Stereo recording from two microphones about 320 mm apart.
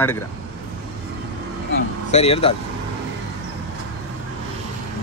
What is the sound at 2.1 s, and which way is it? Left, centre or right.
Speech, centre.